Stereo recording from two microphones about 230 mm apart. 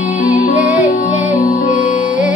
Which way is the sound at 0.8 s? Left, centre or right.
Left.